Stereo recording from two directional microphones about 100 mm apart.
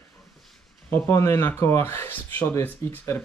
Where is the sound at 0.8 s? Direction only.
25° left (ahead or behind).